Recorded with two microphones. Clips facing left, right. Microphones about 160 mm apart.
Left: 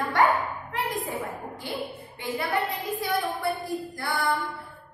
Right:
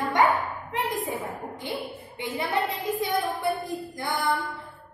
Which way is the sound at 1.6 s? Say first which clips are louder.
Even; 20° right (ahead or behind).